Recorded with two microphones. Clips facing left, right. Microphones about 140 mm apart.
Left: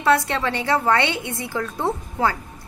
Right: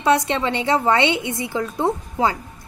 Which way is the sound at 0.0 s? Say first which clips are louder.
Right 1 dB; 20° right (ahead or behind).